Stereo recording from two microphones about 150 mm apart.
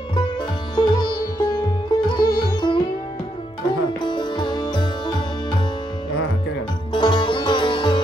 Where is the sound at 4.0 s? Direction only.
30° left (ahead or behind).